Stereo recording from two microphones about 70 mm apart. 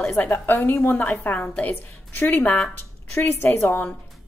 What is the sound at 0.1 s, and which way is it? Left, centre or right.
A woman's voice, left.